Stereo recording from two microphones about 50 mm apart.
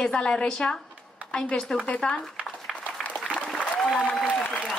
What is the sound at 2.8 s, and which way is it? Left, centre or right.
Applause, left.